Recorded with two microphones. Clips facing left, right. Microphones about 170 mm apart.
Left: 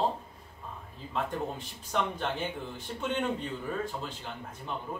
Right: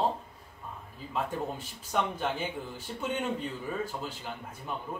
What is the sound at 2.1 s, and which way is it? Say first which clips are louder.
A man's voice: right 1 dB; 5° right (ahead or behind).